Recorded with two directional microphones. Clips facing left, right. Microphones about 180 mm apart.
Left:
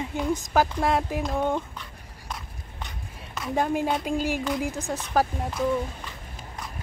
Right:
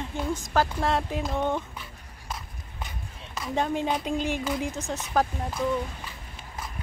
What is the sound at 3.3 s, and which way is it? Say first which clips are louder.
Speech: left 2 dB; 5° left (ahead or behind).